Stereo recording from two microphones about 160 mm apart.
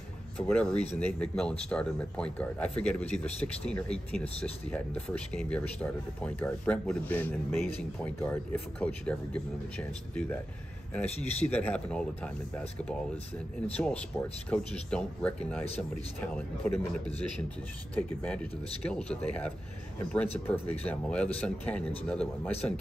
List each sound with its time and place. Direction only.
0.4 s speech: 5° left (ahead or behind)
3.3 s speech: 40° left (ahead or behind)
3.6 s speech: 5° left (ahead or behind)
11.5 s speech: 10° left (ahead or behind)